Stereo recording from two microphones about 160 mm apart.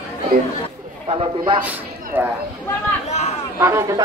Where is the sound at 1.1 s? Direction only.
35° right (ahead or behind).